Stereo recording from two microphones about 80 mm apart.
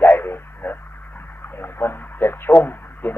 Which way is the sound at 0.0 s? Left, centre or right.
Left.